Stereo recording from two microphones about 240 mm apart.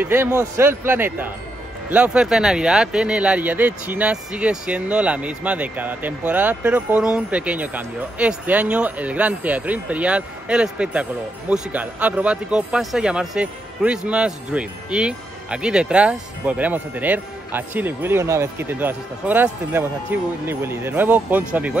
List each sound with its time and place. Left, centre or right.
0.0 s speech: centre